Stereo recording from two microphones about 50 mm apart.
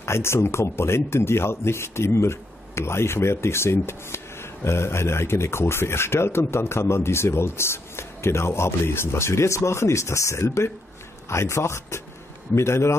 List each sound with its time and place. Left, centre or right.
0.0 s speech: left
12.5 s speech: left